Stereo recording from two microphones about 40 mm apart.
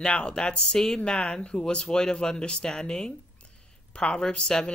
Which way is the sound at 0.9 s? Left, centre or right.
Left.